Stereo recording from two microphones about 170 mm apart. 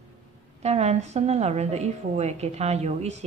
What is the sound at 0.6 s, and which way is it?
A woman's voice, 40° right (ahead or behind).